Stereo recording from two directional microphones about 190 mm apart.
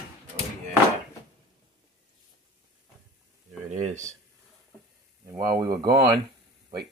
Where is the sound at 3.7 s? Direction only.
40° right (ahead or behind).